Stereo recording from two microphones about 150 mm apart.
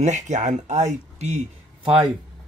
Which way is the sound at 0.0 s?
55° right (ahead or behind).